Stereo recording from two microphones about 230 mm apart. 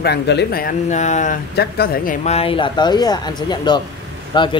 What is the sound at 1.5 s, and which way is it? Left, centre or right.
Speech, left.